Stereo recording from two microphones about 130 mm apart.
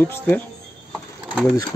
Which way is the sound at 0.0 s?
15° left (ahead or behind).